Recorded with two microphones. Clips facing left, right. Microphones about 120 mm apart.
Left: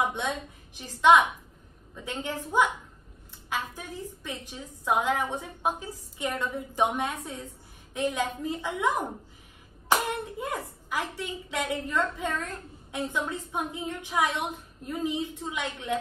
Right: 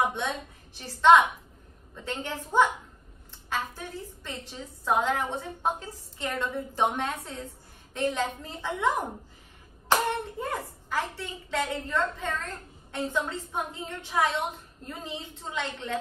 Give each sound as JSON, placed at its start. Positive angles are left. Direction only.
{"t": 0.7, "sound": "a woman's voice", "side_deg": 15}
{"t": 10.0, "sound": "a woman's voice", "side_deg": 15}